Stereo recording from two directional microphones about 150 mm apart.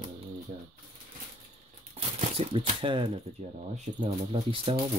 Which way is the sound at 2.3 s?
40° right (ahead or behind).